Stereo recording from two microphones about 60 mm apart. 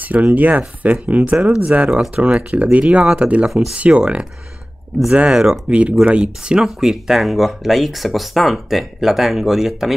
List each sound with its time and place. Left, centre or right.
0.0 s speech: right
5.3 s speech: centre
5.7 s speech: right; by 9.9 s centre